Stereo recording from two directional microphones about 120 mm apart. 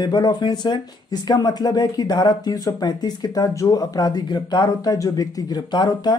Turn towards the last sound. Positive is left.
turn(degrees=35)  # may be behind; listen again after turning